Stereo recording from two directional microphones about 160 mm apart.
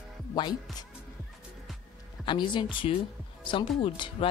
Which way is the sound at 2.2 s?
30° left (ahead or behind).